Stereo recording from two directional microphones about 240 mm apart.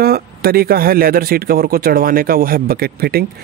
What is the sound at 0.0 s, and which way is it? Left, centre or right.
Speech, right.